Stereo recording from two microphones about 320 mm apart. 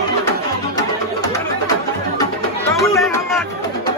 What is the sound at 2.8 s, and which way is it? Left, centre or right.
Music, centre.